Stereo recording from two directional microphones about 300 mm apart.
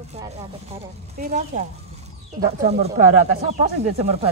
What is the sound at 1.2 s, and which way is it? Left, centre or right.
Speech, right.